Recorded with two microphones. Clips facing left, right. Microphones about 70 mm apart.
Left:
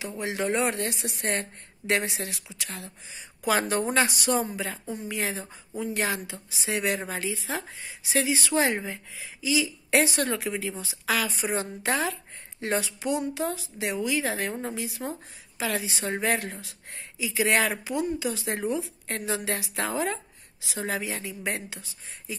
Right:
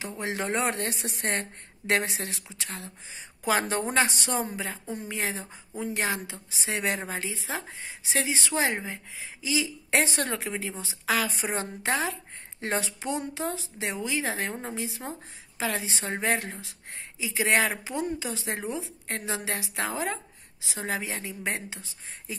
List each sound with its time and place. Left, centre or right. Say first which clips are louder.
0.2 s a woman's voice: left 2 dB; right
9.4 s a woman's voice: left 3 dB; right